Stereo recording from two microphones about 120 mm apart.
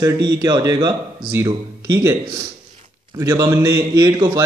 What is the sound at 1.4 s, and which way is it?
Speech, 25° right (ahead or behind).